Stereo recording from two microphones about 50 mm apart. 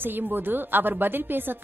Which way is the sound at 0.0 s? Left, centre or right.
Right.